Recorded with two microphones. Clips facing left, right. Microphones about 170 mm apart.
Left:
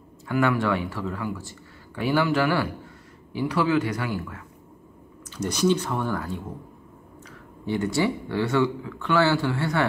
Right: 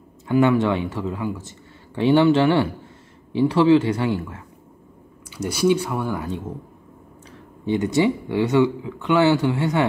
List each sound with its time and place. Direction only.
0.3 s speech: 20° right (ahead or behind)
5.3 s speech: 10° right (ahead or behind)